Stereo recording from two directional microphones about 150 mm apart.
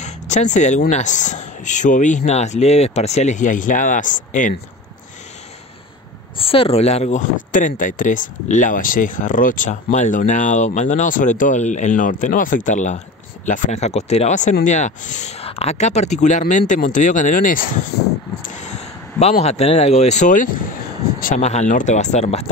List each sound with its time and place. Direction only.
0.0 s speech: 50° left (ahead or behind)
6.3 s speech: 40° left (ahead or behind); by 17.6 s 65° left (ahead or behind)
18.4 s a sound: 55° left (ahead or behind)
19.4 s speech: 45° left (ahead or behind)
21.4 s speech: 50° left (ahead or behind)